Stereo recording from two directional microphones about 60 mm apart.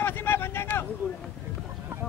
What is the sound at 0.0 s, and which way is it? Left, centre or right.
Vehicle, left.